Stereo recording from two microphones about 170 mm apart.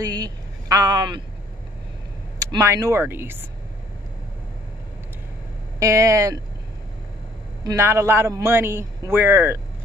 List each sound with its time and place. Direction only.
0.0 s speech: 20° right (ahead or behind)
2.3 s a man's voice: 20° right (ahead or behind)
5.8 s speech: 20° right (ahead or behind)
7.6 s a man's voice: 15° right (ahead or behind)